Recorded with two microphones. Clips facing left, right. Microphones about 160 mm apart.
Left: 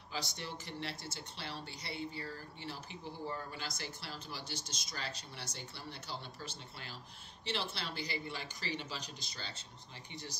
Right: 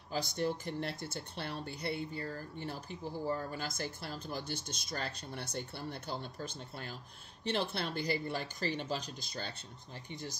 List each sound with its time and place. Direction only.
0.1 s speech: 50° right (ahead or behind)